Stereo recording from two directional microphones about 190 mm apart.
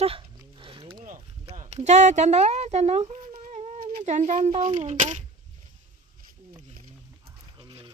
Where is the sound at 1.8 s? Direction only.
40° right (ahead or behind).